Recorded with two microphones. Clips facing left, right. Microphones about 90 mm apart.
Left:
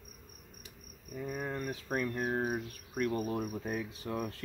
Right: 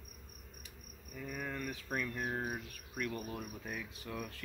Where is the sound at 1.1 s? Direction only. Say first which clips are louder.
Left 5 dB; 30° left (ahead or behind).